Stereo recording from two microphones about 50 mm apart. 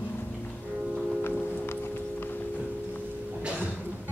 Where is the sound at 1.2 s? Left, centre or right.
Left.